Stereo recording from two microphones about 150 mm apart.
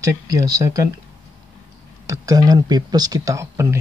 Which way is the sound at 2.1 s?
25° right (ahead or behind).